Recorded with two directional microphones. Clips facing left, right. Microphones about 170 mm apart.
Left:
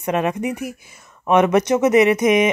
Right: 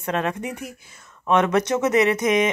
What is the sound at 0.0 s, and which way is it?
Speech, 15° left (ahead or behind).